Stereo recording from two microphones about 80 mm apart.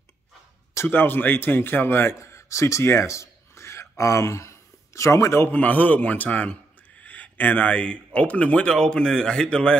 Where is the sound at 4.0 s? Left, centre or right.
Left.